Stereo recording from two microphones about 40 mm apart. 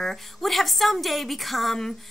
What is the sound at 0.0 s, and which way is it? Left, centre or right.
A woman's voice, centre.